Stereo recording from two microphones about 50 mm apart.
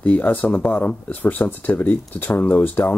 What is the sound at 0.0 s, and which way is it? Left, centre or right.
Speech, left.